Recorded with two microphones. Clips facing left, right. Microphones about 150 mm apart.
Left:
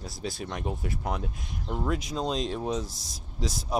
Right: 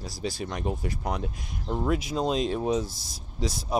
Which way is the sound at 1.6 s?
20° right (ahead or behind).